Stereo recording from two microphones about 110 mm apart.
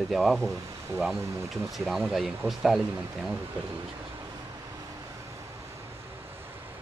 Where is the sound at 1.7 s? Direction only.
Centre (ahead or behind).